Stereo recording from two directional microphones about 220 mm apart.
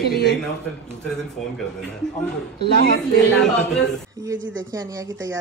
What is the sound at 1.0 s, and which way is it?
Speech, 5° left (ahead or behind).